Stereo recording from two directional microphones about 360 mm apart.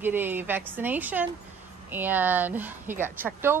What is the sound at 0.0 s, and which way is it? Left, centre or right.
A woman's voice, centre.